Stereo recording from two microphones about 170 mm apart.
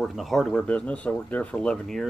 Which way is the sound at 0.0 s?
Centre (ahead or behind).